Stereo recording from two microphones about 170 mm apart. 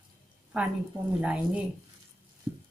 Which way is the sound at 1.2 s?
5° right (ahead or behind).